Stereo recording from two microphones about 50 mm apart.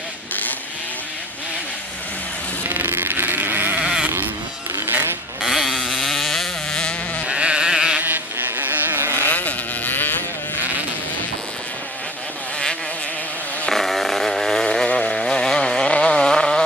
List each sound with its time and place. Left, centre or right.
2.7 s sheep: right
3.7 s sheep: centre
4.8 s vehicle: right
5.4 s chainsaw: centre
6.0 s a sound: centre
6.7 s sheep: left
7.2 s sheep: right
8.0 s vehicle: right
9.2 s a sound: left
13.7 s a sound: centre
15.0 s chainsaw: centre
15.9 s vehicle: left